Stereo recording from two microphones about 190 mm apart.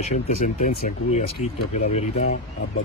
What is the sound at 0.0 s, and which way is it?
Speech, 35° left (ahead or behind).